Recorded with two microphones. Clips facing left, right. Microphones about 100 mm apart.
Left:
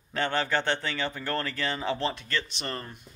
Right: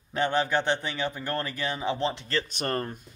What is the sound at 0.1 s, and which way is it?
A man's voice, 15° right (ahead or behind).